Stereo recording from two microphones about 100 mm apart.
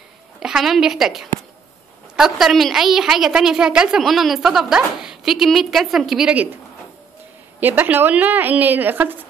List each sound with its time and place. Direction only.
0.4 s a woman's voice: 5° right (ahead or behind)
7.6 s a woman's voice: 20° right (ahead or behind)